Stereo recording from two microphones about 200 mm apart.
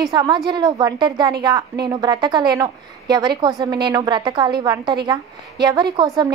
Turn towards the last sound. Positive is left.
turn(degrees=-20)  # may be behind; listen again after turning